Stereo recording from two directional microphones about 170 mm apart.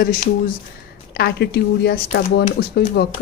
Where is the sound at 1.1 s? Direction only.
75° left (ahead or behind).